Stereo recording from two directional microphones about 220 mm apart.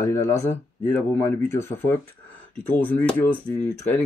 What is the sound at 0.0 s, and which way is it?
Speech, 15° left (ahead or behind).